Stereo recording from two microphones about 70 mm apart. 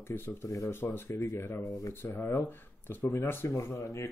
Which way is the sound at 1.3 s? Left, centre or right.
Left.